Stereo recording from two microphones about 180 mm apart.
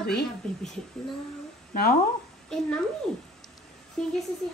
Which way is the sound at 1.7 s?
55° left (ahead or behind).